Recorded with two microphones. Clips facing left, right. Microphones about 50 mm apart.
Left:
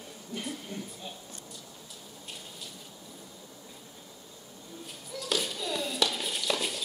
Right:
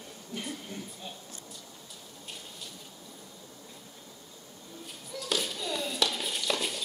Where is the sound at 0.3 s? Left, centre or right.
Centre.